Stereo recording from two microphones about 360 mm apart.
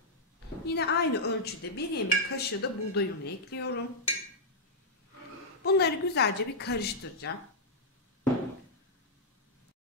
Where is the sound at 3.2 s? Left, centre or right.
Left.